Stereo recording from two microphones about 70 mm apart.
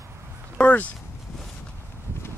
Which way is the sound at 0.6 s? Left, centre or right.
Left.